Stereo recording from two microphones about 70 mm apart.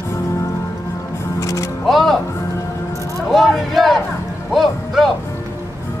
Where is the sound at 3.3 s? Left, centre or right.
Centre.